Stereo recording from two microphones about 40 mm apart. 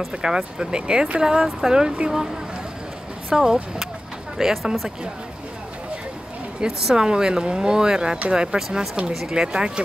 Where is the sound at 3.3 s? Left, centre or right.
Centre.